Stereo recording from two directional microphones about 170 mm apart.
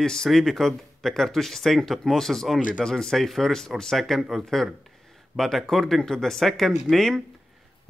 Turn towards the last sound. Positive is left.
turn(degrees=0)  # may be behind; listen again after turning